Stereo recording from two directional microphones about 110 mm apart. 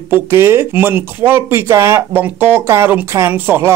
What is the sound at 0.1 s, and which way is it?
Speech, 25° right (ahead or behind).